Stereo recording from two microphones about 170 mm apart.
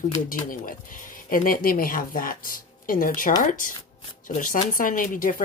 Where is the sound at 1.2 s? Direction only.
55° left (ahead or behind).